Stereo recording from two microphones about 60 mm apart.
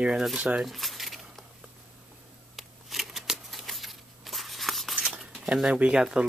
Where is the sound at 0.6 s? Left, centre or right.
Centre.